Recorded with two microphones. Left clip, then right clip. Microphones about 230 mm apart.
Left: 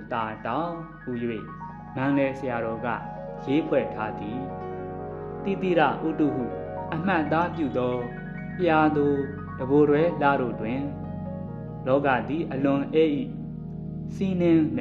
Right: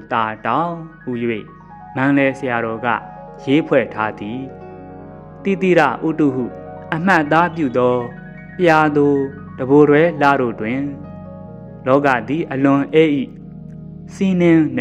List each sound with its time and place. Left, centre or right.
0.1 s speech: right
5.4 s speech: right
11.8 s speech: right